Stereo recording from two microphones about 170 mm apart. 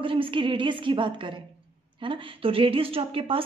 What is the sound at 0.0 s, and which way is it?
A woman's voice, 30° right (ahead or behind).